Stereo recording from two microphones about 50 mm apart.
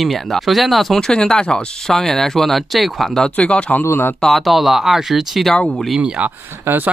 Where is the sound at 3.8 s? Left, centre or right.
Left.